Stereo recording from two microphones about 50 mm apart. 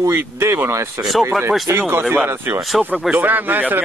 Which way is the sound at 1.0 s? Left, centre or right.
Right.